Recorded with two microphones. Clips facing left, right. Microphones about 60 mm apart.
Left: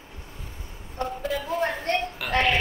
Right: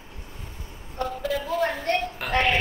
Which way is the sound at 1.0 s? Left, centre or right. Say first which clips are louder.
Right 1 dB; left.